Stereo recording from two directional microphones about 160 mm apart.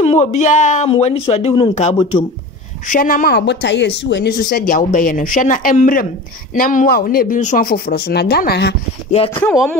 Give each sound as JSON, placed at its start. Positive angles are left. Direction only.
{"t": 0.0, "sound": "speech", "side_deg": 45}
{"t": 0.8, "sound": "speech", "side_deg": 40}
{"t": 2.9, "sound": "speech", "side_deg": 55}
{"t": 9.1, "sound": "speech", "side_deg": 35}
{"t": 9.4, "sound": "speech", "side_deg": 5}